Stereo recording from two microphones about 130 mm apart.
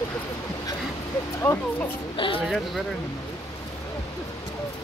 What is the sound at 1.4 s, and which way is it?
Speech, 15° left (ahead or behind).